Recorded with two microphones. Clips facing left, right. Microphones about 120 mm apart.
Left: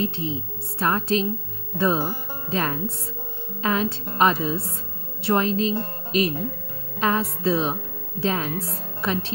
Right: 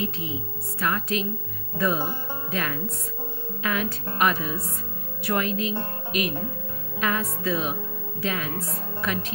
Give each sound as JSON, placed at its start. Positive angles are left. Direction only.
{"t": 0.0, "sound": "a woman's voice", "side_deg": 30}